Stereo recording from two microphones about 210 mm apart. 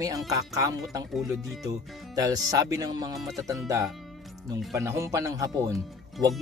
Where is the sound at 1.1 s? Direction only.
Centre (ahead or behind).